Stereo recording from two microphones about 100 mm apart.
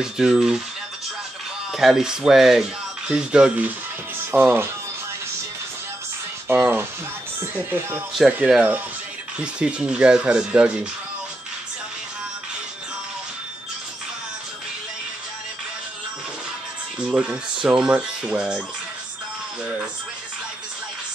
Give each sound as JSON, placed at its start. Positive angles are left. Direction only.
{"t": 0.0, "sound": "speech", "side_deg": -5}
{"t": 1.7, "sound": "speech", "side_deg": -5}
{"t": 6.5, "sound": "speech", "side_deg": -15}
{"t": 8.2, "sound": "speech", "side_deg": -5}
{"t": 9.4, "sound": "speech", "side_deg": -10}
{"t": 17.0, "sound": "speech", "side_deg": -10}